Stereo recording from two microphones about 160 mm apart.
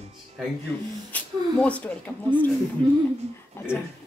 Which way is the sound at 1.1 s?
10° left (ahead or behind).